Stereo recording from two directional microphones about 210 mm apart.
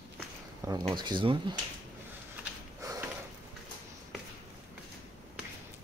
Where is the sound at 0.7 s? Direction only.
20° right (ahead or behind).